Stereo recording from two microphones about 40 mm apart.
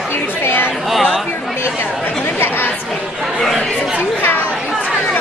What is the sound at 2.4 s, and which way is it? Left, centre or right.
Chatter, left.